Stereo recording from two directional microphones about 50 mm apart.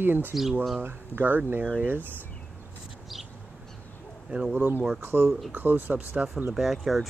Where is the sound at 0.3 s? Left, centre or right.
Centre.